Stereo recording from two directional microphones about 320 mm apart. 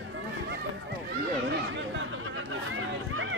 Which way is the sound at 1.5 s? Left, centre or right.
Right.